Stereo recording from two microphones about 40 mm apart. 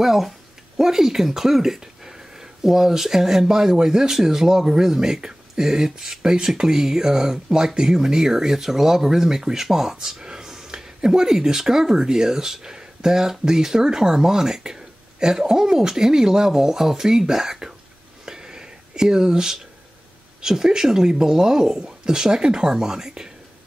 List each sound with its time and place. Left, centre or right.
0.0 s speech: centre
18.2 s a sound: centre
20.4 s speech: centre